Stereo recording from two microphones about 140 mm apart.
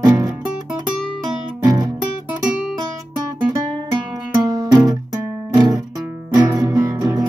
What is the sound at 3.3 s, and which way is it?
Music, 30° right (ahead or behind).